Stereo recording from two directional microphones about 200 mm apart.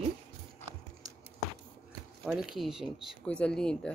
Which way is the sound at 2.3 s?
Centre (ahead or behind).